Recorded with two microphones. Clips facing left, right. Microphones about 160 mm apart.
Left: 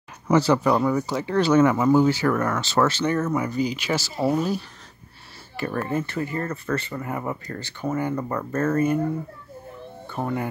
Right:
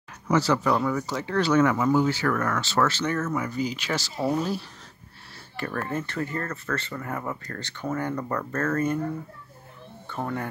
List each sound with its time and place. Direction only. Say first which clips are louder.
0.3 s speech: left 4 dB; 15° left (ahead or behind)
10.0 s speech: left 3 dB; 10° left (ahead or behind)